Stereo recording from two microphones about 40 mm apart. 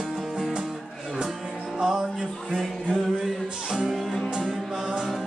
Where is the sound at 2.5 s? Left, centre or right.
Centre.